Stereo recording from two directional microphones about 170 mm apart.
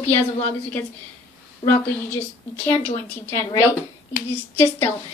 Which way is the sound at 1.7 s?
10° left (ahead or behind).